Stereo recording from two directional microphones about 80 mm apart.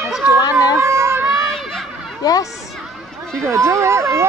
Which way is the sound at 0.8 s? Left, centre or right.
Right.